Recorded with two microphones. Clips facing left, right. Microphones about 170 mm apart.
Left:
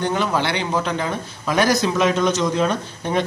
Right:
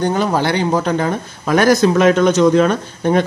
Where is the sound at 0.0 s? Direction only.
40° right (ahead or behind).